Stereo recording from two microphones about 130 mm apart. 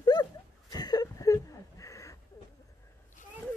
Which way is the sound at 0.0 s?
30° left (ahead or behind).